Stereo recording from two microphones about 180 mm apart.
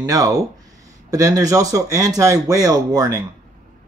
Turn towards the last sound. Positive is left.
turn(degrees=-20)  # may be behind; listen again after turning